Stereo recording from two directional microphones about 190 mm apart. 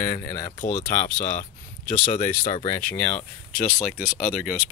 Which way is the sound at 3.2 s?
40° left (ahead or behind).